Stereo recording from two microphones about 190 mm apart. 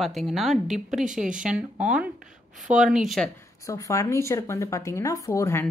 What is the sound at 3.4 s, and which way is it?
A woman's voice, 15° left (ahead or behind).